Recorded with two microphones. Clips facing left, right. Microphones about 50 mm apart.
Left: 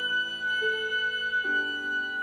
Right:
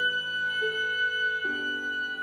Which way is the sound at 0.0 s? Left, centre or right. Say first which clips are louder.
Right 1 dB; centre.